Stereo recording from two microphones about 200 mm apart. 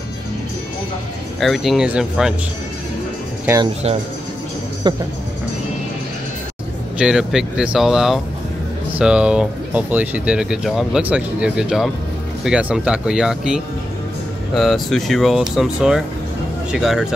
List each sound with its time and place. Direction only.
1.4 s speech: centre (ahead or behind)
4.9 s speech: 20° right (ahead or behind)
7.0 s speech: 5° right (ahead or behind)